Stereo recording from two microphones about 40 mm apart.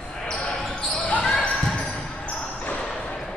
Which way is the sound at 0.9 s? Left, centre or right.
Left.